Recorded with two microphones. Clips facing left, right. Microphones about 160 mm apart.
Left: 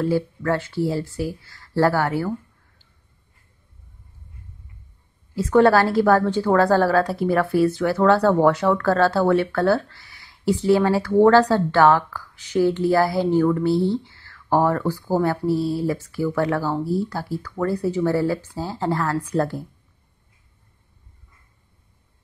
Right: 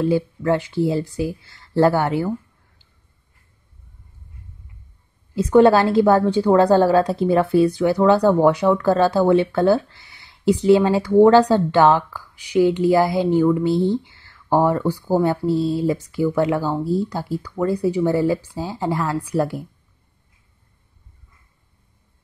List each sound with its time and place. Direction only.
0.0 s speech: 20° right (ahead or behind)
5.3 s a woman's voice: 20° right (ahead or behind)